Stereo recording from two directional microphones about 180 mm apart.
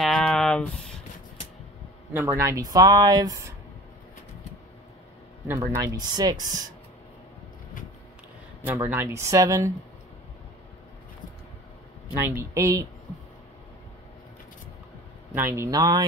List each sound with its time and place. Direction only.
0.0 s a sound: 5° left (ahead or behind)
2.1 s speech: 15° right (ahead or behind)
5.8 s speech: 20° right (ahead or behind)
8.6 s speech: 10° right (ahead or behind)
12.2 s speech: 15° right (ahead or behind)
15.3 s speech: 15° right (ahead or behind)